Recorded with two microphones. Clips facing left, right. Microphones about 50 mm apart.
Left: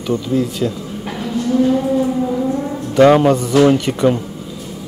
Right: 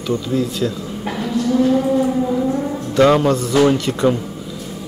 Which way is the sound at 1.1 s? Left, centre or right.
Centre.